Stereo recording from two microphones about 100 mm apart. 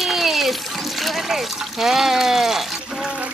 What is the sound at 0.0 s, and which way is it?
Water, centre (ahead or behind).